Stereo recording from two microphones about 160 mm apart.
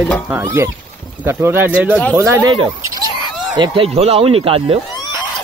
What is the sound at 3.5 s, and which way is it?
Speech, 30° right (ahead or behind).